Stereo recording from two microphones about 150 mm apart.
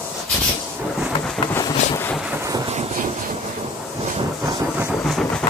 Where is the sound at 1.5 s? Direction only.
20° left (ahead or behind).